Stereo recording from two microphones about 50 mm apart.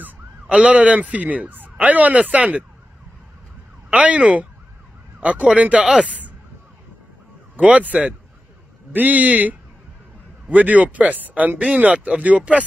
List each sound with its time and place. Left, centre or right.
0.5 s speech: right
3.9 s speech: right
6.0 s a sound: right
7.6 s speech: right